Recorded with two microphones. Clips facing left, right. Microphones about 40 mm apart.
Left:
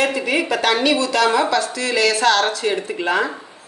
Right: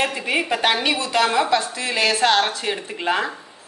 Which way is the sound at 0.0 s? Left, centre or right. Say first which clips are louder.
Left 3 dB; right.